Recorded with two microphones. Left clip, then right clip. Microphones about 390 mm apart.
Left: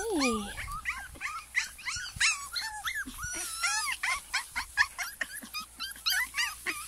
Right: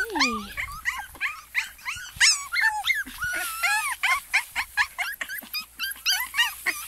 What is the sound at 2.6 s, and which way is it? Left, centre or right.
Dog, right.